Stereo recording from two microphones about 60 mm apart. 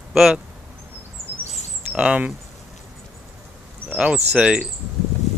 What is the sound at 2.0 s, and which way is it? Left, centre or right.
Speech, right.